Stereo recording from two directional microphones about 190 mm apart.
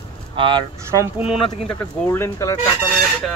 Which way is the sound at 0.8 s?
15° right (ahead or behind).